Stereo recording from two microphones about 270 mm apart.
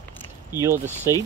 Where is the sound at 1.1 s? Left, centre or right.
Centre.